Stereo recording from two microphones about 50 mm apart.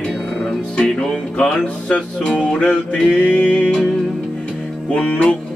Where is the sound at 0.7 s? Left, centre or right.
Centre.